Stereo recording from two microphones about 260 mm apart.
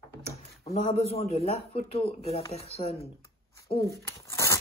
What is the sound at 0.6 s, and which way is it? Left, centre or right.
A man's voice, left.